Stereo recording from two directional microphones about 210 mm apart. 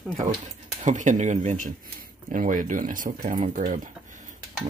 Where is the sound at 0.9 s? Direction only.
35° right (ahead or behind).